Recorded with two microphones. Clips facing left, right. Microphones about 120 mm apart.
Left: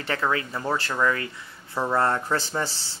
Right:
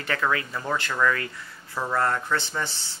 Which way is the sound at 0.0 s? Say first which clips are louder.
Even; 30° left (ahead or behind).